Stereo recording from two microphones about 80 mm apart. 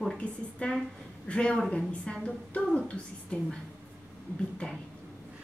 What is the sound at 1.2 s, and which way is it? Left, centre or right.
A woman's voice, centre.